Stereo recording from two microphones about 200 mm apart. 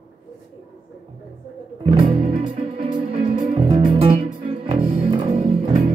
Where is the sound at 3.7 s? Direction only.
25° right (ahead or behind).